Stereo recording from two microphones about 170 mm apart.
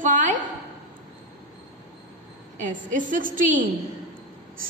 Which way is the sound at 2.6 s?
50° right (ahead or behind).